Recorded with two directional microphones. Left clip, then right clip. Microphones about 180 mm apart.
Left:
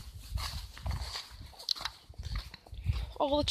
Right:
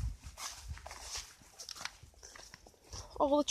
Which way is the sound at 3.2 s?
40° right (ahead or behind).